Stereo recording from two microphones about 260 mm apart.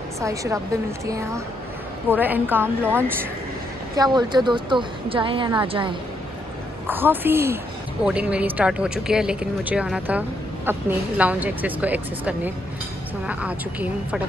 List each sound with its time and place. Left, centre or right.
0.2 s a woman's voice: centre
6.9 s a woman's voice: centre